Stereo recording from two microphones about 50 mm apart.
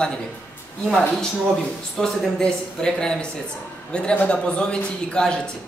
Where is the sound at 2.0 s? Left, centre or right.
Centre.